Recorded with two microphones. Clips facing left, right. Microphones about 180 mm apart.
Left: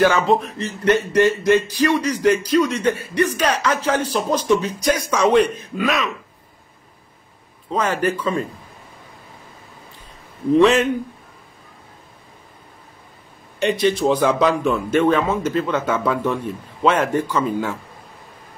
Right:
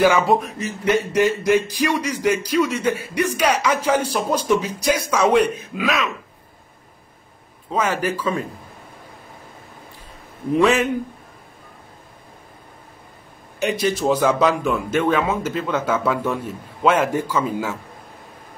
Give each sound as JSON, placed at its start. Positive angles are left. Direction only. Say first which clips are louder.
{"t": 0.0, "sound": "a man's voice", "louder": "even", "side_deg": -10}
{"t": 7.7, "sound": "a man's voice", "louder": "left 1 dB", "side_deg": -5}
{"t": 13.6, "sound": "a man's voice", "louder": "left 3 dB", "side_deg": -5}